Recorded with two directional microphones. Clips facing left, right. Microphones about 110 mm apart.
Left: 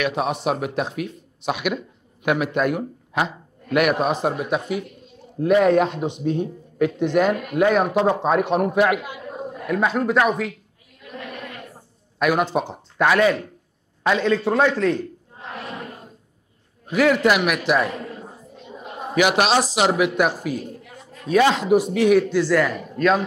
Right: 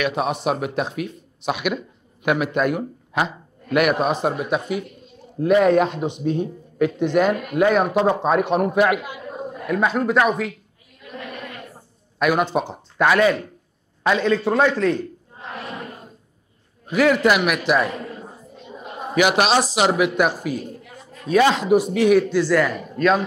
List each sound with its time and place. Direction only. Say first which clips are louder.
0.0 s speech: right 1 dB; 10° right (ahead or behind)
11.1 s a sound: right 1 dB; 15° right (ahead or behind)
12.2 s speech: right 1 dB; 15° right (ahead or behind)
13.0 s speech: right 1 dB; 10° right (ahead or behind)
14.0 s a sound: right 1 dB; 15° right (ahead or behind)
19.1 s speech: right 1 dB; 10° right (ahead or behind)